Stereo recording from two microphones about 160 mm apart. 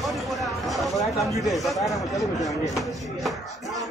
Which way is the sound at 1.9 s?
20° left (ahead or behind).